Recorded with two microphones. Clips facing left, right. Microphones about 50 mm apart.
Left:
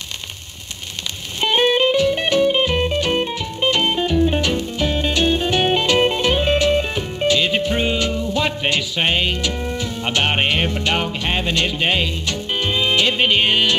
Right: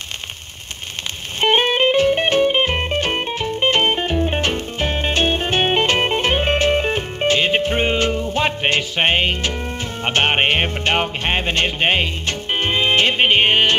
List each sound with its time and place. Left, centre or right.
1.4 s music: right